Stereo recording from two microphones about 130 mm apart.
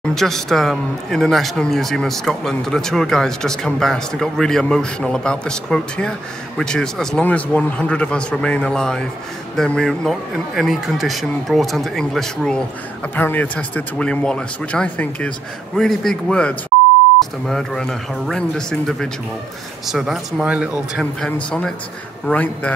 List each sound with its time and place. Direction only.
0.1 s a man's voice: 5° left (ahead or behind)
13.1 s a man's voice: 15° left (ahead or behind)